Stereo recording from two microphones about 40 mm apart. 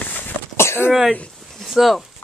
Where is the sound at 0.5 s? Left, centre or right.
Left.